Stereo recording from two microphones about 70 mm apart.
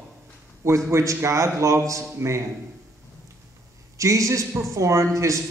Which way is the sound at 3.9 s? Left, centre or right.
Right.